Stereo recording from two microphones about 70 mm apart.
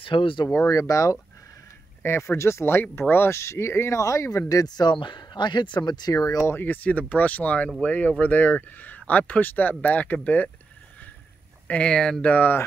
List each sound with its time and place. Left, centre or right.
0.5 s speech: left
2.0 s speech: left
4.5 s speech: left
6.5 s speech: left
11.6 s a sound: left
11.9 s speech: centre
12.3 s speech: left